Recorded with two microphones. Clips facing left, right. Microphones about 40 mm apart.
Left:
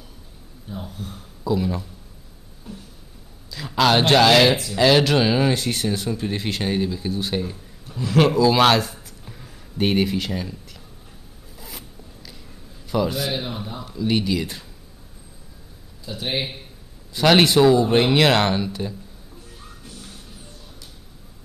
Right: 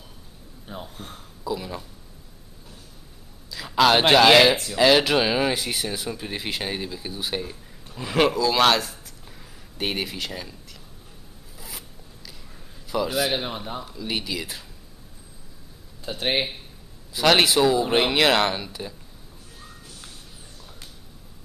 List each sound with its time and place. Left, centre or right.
0.9 s speech: right
1.4 s speech: centre
3.4 s a man's voice: centre
11.5 s zipper: centre
12.8 s a man's voice: centre
13.3 s speech: right
13.8 s speech: centre
16.1 s speech: right
17.1 s speech: centre